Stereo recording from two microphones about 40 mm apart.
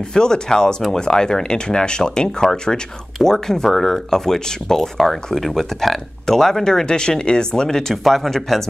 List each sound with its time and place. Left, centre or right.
0.1 s speech: centre
7.9 s speech: centre